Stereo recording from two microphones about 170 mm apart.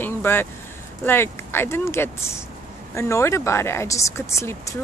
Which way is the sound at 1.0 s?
15° left (ahead or behind).